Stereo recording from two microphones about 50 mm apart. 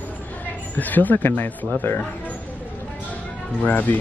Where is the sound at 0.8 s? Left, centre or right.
Left.